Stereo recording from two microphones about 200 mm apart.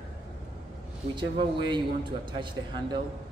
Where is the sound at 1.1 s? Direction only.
25° right (ahead or behind).